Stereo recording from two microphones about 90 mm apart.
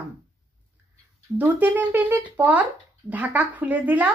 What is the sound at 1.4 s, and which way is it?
Speech, 20° right (ahead or behind).